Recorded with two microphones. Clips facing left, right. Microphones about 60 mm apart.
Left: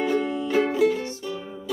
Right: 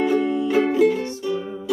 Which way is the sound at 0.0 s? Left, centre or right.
Centre.